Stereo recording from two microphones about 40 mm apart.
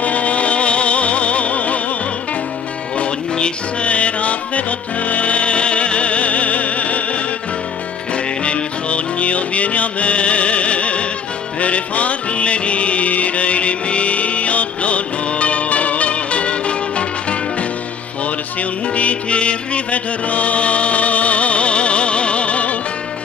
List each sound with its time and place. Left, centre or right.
0.0 s music: left
3.0 s music: left
8.5 s music: left